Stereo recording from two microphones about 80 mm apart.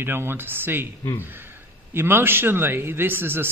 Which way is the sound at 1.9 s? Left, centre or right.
Right.